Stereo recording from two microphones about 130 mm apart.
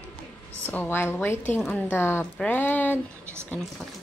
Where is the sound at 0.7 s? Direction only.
15° left (ahead or behind).